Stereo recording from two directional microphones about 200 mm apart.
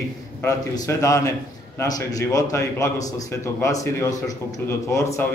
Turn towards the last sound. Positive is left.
turn(degrees=15)  # may be behind; listen again after turning